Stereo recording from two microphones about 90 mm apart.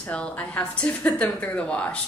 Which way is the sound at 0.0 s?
15° left (ahead or behind).